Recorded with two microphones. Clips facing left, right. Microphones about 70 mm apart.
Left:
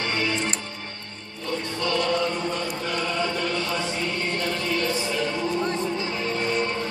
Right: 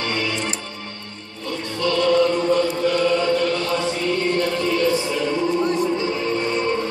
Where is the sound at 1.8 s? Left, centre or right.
Left.